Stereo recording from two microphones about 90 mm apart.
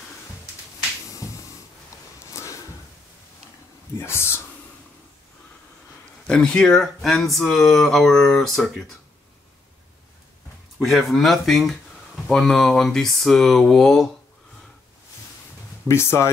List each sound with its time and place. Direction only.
1.2 s a sound: 40° left (ahead or behind)
4.0 s speech: 30° left (ahead or behind)
6.2 s speech: 10° left (ahead or behind)
10.8 s speech: centre (ahead or behind)
15.9 s speech: 30° left (ahead or behind)